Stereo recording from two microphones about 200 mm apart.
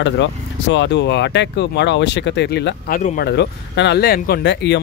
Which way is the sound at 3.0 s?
40° left (ahead or behind).